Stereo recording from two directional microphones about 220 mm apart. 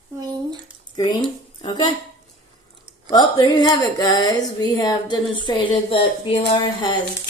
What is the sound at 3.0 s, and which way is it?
Speech, 20° left (ahead or behind).